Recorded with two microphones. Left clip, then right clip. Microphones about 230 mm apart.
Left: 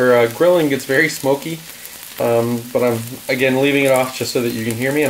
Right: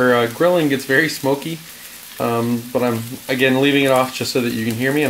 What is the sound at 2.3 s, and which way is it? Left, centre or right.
Speech, right.